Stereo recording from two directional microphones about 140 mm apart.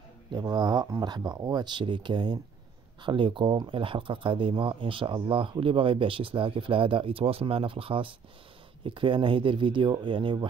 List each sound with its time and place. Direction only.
0.3 s speech: 30° right (ahead or behind)